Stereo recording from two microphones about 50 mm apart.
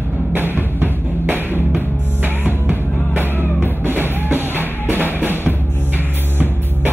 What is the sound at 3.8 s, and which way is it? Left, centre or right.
Music, right.